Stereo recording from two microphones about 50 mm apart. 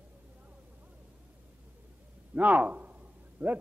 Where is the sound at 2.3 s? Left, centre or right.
Right.